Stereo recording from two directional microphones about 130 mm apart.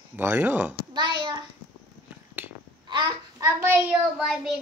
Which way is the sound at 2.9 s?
30° right (ahead or behind).